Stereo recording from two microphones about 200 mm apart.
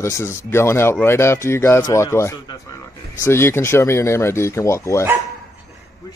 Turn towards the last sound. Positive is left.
turn(degrees=15)  # may be behind; listen again after turning